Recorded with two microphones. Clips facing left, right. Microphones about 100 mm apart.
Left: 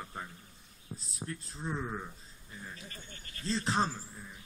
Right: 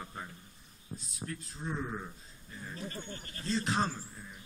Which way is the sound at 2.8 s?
35° right (ahead or behind).